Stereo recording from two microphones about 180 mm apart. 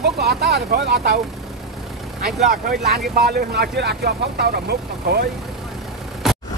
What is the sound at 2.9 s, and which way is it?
Speech, 60° right (ahead or behind).